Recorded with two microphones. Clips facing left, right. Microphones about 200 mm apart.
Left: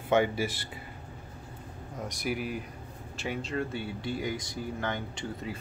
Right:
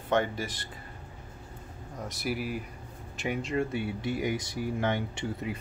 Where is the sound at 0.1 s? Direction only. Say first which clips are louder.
Left 2 dB; 10° left (ahead or behind).